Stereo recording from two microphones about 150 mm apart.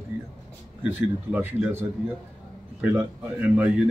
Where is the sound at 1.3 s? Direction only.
15° right (ahead or behind).